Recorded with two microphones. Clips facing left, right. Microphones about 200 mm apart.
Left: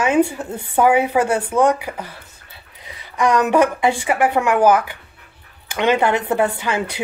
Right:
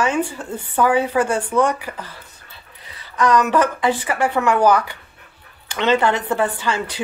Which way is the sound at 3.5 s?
10° left (ahead or behind).